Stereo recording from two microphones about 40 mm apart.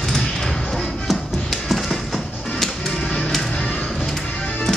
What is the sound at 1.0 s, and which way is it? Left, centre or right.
Music, centre.